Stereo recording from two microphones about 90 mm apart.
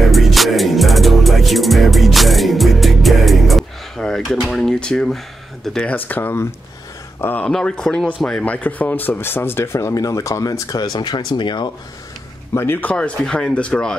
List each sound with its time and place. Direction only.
0.0 s music: centre (ahead or behind)
4.2 s drawer open or close: centre (ahead or behind)
5.7 s speech: 15° left (ahead or behind)
7.4 s speech: 10° left (ahead or behind); by 11.7 s 55° left (ahead or behind)
12.5 s speech: 25° left (ahead or behind)
12.9 s speech: 10° left (ahead or behind)